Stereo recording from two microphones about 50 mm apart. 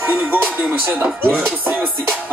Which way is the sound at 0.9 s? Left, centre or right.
Right.